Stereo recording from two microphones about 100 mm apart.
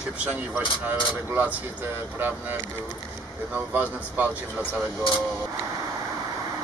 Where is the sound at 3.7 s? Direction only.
15° right (ahead or behind).